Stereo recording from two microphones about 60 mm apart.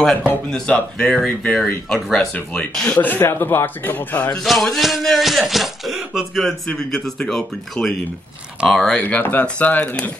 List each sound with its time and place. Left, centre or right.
0.9 s speech: centre
2.5 s speech: centre
3.0 s a man's voice: left
4.4 s speech: centre
6.8 s speech: centre
9.0 s speech: left